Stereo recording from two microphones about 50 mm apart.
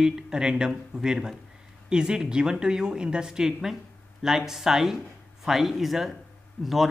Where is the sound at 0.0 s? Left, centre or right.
Centre.